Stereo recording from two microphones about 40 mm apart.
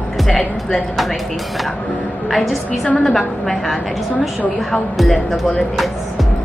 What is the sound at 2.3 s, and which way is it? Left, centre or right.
Speech, centre.